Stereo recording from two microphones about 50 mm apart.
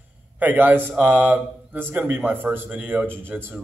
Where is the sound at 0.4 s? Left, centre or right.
Right.